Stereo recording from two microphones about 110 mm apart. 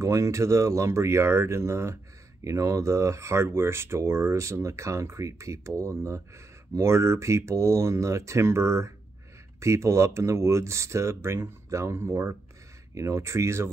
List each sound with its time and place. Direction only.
0.0 s speech: 30° right (ahead or behind)